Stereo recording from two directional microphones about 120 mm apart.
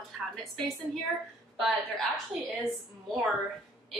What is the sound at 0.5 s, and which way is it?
A woman's voice, 5° left (ahead or behind).